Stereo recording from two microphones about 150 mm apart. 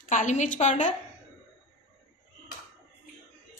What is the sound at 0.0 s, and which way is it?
Speech, 55° left (ahead or behind).